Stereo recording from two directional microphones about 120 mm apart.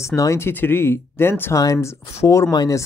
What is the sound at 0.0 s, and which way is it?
Speech, 25° left (ahead or behind).